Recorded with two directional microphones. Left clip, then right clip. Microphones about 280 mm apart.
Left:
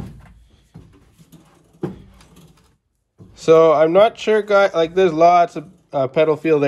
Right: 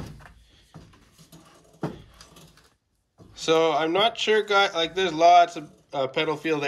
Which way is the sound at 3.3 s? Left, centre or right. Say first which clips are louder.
Left 10 dB; centre.